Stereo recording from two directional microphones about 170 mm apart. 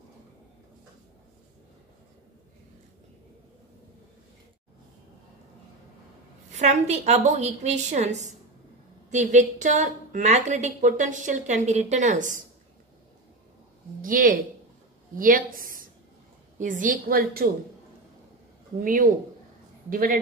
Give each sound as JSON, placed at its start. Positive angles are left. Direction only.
{"t": 6.5, "sound": "a woman's voice", "side_deg": -40}
{"t": 14.0, "sound": "a woman's voice", "side_deg": -55}
{"t": 18.8, "sound": "a woman's voice", "side_deg": -50}